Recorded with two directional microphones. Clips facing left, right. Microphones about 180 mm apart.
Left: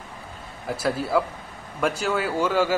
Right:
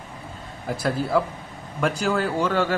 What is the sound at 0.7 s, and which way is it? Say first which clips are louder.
A man's voice: right 1 dB; centre (ahead or behind).